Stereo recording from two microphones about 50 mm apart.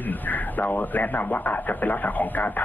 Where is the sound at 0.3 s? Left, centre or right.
Left.